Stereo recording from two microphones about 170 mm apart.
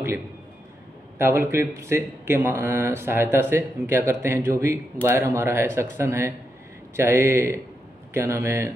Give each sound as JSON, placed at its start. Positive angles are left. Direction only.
{"t": 1.1, "sound": "speech", "side_deg": -15}